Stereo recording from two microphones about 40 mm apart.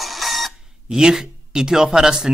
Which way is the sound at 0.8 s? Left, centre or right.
Centre.